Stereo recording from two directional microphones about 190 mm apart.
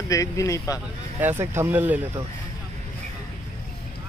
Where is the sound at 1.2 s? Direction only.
10° right (ahead or behind).